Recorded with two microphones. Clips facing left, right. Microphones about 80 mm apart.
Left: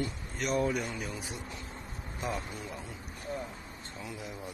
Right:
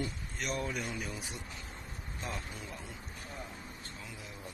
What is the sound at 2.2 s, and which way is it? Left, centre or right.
Speech, centre.